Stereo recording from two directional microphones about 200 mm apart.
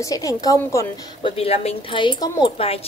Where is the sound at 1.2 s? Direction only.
30° left (ahead or behind).